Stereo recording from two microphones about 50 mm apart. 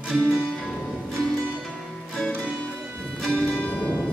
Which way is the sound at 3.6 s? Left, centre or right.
Left.